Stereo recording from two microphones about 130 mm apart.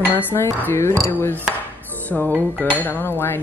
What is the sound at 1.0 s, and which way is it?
Speech, 15° left (ahead or behind).